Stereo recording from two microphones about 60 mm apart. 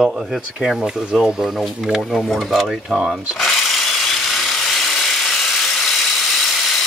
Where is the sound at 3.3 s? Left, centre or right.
Centre.